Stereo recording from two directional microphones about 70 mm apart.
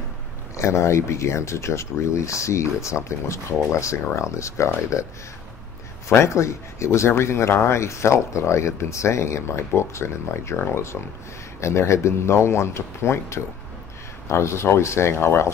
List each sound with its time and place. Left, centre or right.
0.6 s speech: left
6.0 s speech: left